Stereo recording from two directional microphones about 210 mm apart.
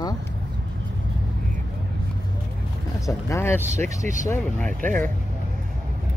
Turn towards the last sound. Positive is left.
turn(degrees=10)  # may be behind; listen again after turning